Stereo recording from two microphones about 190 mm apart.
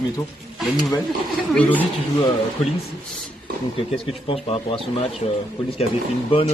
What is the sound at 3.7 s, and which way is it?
Speech, 30° left (ahead or behind).